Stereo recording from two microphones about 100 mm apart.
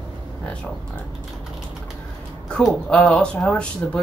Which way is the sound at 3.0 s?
5° left (ahead or behind).